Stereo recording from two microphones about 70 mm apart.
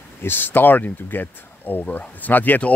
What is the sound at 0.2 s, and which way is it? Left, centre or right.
Speech, left.